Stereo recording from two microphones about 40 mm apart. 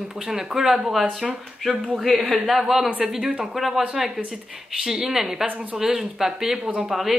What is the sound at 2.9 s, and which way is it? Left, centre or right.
Speech, right.